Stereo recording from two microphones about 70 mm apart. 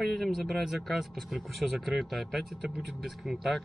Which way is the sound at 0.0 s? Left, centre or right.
Centre.